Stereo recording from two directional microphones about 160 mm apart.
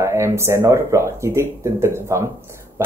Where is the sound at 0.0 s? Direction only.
15° right (ahead or behind).